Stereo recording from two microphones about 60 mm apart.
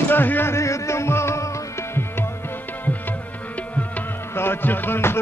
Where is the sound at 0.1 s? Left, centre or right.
Left.